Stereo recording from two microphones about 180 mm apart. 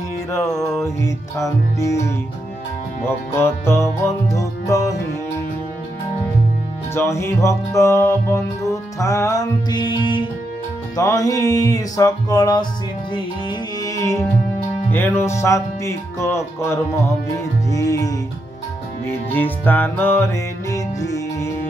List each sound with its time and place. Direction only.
0.5 s music: centre (ahead or behind)
1.0 s music: 15° left (ahead or behind)
6.9 s music: 15° left (ahead or behind)
17.6 s music: 20° left (ahead or behind)
19.3 s music: 10° left (ahead or behind)